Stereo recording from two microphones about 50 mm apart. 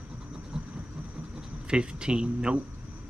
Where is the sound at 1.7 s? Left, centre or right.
Centre.